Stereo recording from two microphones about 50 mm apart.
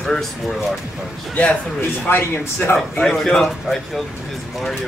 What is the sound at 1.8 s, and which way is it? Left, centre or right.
Speech, left.